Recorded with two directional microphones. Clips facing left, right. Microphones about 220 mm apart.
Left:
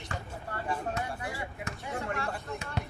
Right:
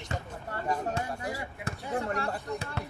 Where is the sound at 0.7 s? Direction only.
40° right (ahead or behind).